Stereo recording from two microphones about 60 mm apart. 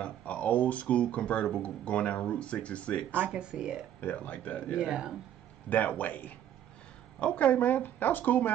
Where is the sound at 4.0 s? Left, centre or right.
Left.